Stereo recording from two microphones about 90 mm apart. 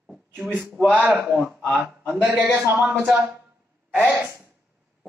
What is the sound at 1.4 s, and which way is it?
A man's voice, 10° right (ahead or behind).